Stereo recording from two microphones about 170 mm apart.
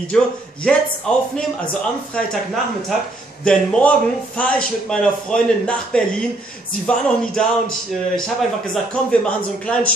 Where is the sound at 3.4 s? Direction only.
5° left (ahead or behind).